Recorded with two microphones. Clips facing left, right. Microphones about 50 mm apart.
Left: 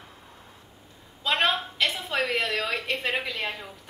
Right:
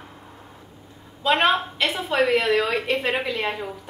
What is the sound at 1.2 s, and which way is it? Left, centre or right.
A woman's voice, centre.